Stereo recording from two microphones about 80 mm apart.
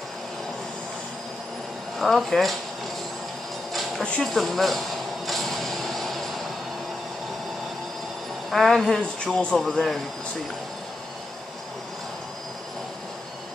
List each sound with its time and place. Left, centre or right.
2.0 s speech: centre
4.2 s a sound: centre
8.5 s speech: centre